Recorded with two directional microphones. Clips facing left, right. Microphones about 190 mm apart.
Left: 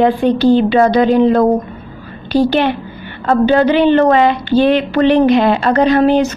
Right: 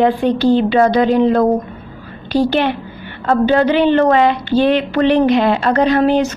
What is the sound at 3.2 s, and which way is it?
A woman's voice, 25° left (ahead or behind).